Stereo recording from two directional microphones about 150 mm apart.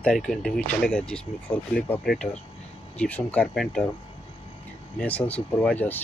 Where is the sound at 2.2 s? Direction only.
30° left (ahead or behind).